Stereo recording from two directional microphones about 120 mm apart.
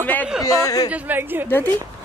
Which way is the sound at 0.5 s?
30° left (ahead or behind).